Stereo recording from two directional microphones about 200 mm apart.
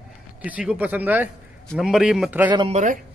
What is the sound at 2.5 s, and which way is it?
Speech, 25° right (ahead or behind).